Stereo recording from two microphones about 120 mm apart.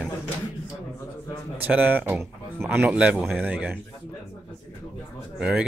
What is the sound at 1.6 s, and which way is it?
Speech, 15° right (ahead or behind).